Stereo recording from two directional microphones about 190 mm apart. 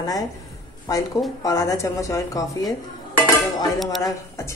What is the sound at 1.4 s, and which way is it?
Speech, 20° left (ahead or behind).